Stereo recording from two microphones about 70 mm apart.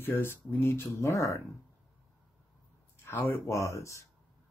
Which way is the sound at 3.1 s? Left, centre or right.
Left.